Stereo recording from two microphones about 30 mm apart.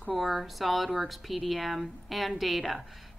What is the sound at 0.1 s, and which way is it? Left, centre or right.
Speech, centre.